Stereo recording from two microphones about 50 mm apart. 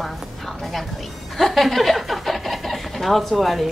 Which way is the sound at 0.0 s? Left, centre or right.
Centre.